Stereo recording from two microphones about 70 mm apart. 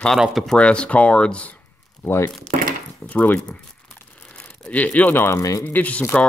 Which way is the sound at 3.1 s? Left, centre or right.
Left.